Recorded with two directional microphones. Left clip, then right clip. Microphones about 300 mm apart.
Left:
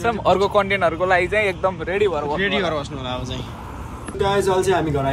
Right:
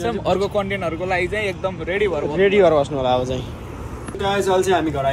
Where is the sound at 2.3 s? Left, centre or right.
Centre.